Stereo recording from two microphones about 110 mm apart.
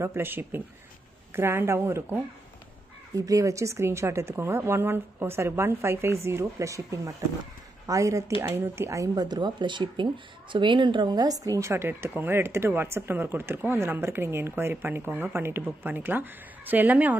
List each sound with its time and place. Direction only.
0.0 s speech: 20° right (ahead or behind)